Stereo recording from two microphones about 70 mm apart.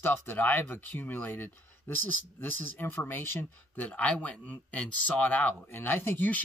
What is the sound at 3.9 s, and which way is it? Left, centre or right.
Speech, centre.